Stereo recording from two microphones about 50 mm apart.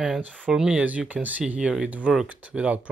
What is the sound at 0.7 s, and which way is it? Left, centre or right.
Speech, right.